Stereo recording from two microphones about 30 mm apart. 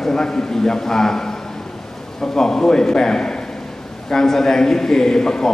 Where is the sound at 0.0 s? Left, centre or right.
Left.